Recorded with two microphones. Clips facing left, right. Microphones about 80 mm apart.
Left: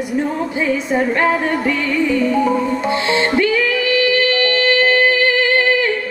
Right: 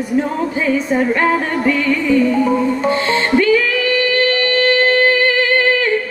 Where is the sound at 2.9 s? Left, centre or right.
Right.